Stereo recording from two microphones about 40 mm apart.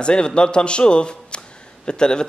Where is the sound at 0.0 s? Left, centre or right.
Left.